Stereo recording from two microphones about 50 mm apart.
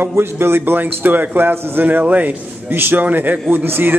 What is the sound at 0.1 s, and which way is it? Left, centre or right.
A man's voice, right.